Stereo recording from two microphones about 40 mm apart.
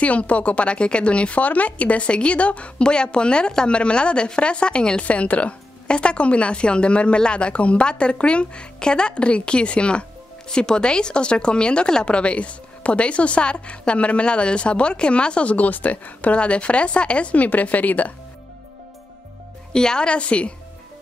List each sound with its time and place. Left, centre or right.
0.0 s speech: left
5.0 s speech: left
15.5 s speech: left
19.7 s speech: centre